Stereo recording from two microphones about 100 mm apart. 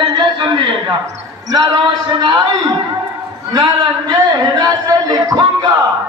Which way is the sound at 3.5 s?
45° right (ahead or behind).